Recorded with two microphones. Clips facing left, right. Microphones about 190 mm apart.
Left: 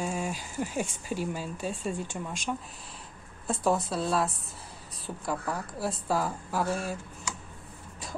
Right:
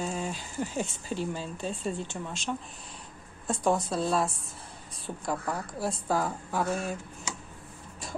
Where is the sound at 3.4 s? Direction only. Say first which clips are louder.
Even; 5° left (ahead or behind).